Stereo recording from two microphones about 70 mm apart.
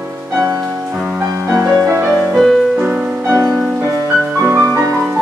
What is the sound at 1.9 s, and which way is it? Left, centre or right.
Music, right.